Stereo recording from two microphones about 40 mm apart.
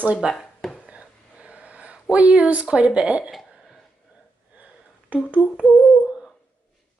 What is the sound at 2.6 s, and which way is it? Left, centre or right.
Speech, right.